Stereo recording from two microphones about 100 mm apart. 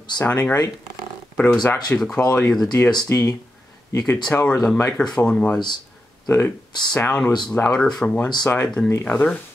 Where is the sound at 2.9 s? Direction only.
40° left (ahead or behind).